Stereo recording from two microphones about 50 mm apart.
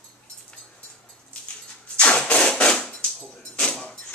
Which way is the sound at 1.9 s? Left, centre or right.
Left.